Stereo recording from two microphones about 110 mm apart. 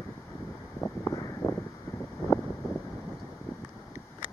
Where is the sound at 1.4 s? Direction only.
25° left (ahead or behind).